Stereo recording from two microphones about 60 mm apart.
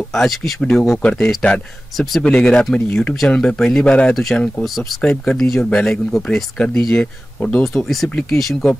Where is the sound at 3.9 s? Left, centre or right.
Centre.